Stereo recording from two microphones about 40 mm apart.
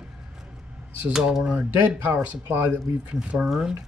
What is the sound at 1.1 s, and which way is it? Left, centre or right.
Speech, centre.